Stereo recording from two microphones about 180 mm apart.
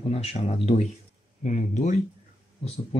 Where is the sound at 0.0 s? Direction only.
35° left (ahead or behind).